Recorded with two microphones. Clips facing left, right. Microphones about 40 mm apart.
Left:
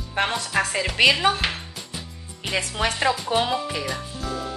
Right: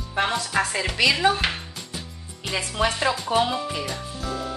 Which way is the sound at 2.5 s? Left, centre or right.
Left.